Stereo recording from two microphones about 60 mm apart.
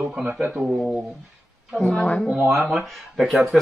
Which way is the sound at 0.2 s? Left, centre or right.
Right.